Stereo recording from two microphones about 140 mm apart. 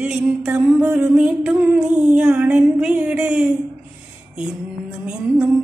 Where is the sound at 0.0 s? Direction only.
10° right (ahead or behind).